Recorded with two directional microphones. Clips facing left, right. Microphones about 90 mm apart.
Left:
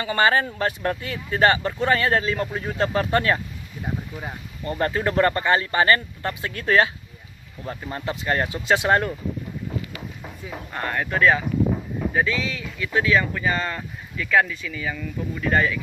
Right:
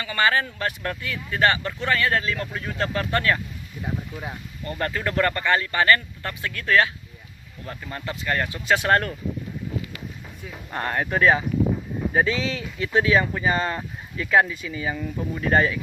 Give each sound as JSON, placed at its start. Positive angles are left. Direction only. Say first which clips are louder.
{"t": 0.0, "sound": "speech", "louder": "left 2 dB", "side_deg": 30}
{"t": 4.6, "sound": "speech", "louder": "left 4 dB", "side_deg": 20}
{"t": 10.7, "sound": "speech", "louder": "right 1 dB", "side_deg": -30}